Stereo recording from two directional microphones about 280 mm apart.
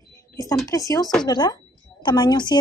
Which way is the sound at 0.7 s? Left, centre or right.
Centre.